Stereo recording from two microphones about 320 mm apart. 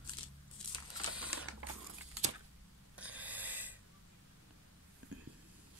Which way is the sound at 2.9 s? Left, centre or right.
Centre.